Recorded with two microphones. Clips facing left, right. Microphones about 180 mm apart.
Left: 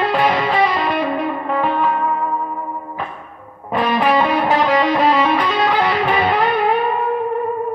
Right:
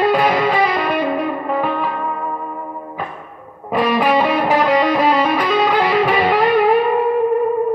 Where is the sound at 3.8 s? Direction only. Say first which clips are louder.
Right 1 dB; centre (ahead or behind).